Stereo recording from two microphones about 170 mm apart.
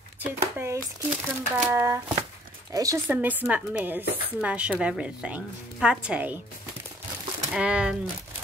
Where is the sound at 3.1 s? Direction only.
10° right (ahead or behind).